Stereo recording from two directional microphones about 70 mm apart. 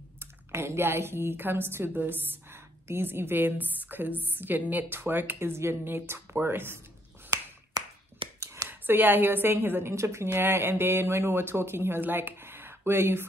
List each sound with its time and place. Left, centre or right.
0.2 s a woman's voice: right
7.8 s finger snapping: right
8.6 s a woman's voice: right